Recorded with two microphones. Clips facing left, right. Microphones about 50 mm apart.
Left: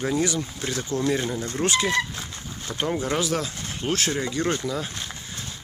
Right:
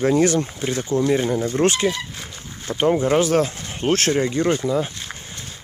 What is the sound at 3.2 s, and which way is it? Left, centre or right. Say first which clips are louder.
Speech: right 8 dB; right.